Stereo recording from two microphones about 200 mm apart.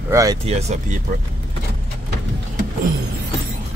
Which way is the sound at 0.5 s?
30° right (ahead or behind).